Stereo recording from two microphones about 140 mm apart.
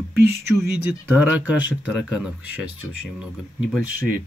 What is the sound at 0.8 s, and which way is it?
Speech, 10° right (ahead or behind).